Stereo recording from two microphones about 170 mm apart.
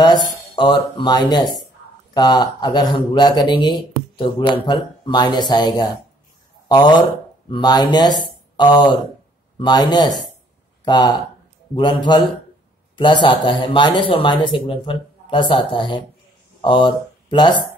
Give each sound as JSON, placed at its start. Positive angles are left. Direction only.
{"t": 0.6, "sound": "speech", "side_deg": 25}